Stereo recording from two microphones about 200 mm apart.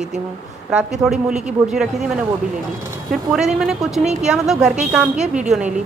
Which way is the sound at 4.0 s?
35° right (ahead or behind).